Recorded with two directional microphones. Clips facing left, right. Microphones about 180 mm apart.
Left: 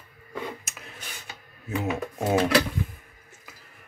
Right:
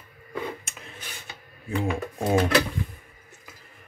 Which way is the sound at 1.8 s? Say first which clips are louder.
Right 1 dB; 5° left (ahead or behind).